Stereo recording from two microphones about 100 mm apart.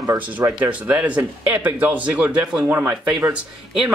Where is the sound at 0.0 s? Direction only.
30° right (ahead or behind).